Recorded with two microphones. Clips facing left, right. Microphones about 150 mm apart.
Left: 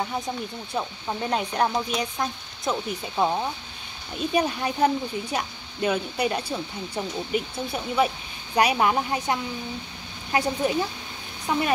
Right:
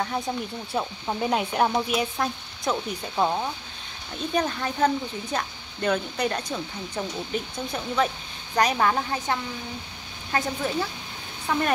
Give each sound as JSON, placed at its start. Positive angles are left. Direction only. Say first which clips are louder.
{"t": 0.0, "sound": "speech", "louder": "right 1 dB", "side_deg": 5}